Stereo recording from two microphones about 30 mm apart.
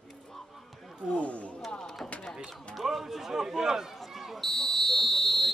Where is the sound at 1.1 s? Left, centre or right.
Left.